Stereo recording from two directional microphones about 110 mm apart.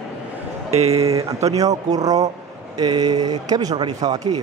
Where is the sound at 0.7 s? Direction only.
70° right (ahead or behind).